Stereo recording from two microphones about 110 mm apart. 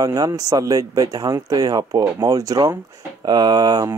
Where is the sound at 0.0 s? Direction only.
35° right (ahead or behind).